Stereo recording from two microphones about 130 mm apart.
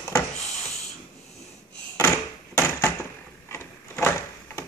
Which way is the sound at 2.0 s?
20° left (ahead or behind).